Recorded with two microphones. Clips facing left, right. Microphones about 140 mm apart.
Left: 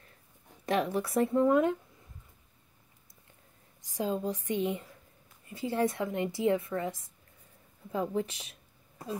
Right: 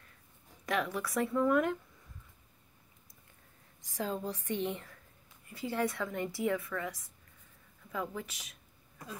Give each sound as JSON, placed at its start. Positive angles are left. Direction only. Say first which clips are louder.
{"t": 0.7, "sound": "a woman's voice", "louder": "left 5 dB", "side_deg": 30}
{"t": 3.9, "sound": "a woman's voice", "louder": "left 4 dB", "side_deg": 20}